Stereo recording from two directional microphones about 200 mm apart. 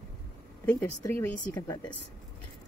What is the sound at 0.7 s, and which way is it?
Speech, 10° left (ahead or behind).